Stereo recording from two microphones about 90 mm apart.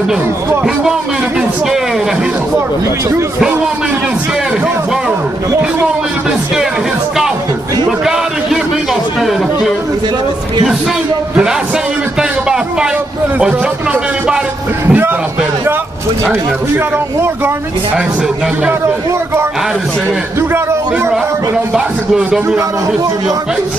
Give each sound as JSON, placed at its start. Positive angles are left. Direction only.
{"t": 14.9, "sound": "speech", "side_deg": -25}
{"t": 16.3, "sound": "speech", "side_deg": -25}
{"t": 20.3, "sound": "speech", "side_deg": -25}
{"t": 21.7, "sound": "speech", "side_deg": -5}